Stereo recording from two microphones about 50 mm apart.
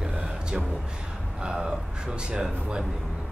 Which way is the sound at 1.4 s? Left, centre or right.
Centre.